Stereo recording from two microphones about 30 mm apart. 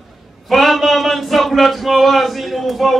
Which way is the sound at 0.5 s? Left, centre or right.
Centre.